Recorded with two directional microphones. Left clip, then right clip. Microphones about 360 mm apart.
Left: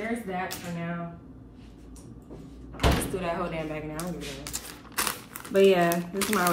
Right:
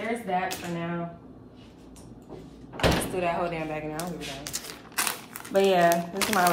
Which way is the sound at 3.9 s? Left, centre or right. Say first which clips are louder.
Right 2 dB; centre.